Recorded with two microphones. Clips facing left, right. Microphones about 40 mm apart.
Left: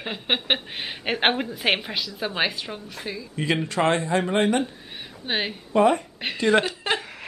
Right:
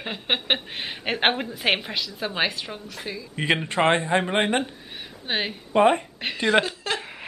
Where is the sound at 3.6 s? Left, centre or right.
Right.